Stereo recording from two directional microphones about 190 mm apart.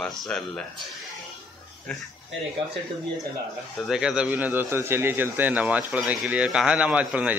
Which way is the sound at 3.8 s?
5° right (ahead or behind).